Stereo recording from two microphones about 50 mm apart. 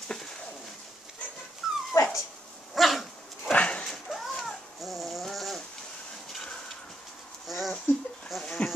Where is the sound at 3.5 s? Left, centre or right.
Left.